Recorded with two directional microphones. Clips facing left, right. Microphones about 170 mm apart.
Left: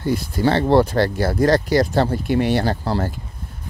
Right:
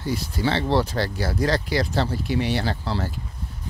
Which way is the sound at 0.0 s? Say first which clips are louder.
Left 6 dB; 55° left (ahead or behind).